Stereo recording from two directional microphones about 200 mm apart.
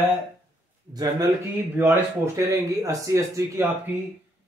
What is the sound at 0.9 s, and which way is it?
Speech, 20° right (ahead or behind).